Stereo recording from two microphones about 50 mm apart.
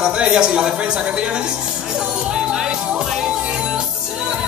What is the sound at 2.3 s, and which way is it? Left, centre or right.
Music, centre.